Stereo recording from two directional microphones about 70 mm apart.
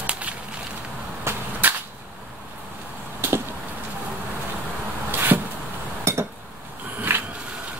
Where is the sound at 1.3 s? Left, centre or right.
Right.